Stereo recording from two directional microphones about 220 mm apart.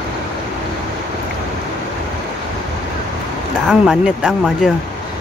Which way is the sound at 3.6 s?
5° right (ahead or behind).